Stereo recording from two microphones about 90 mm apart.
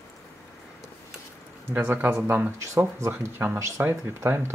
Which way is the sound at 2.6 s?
35° right (ahead or behind).